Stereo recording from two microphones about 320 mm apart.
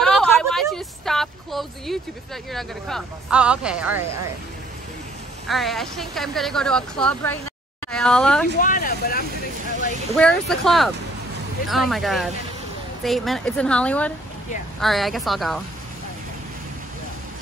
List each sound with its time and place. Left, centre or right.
0.0 s a sound: centre
2.5 s speech: centre
5.5 s speech: centre
8.5 s speech: left
10.1 s speech: centre